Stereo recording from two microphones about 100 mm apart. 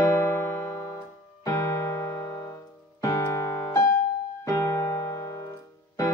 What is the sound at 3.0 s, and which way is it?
Keyboard, 35° left (ahead or behind).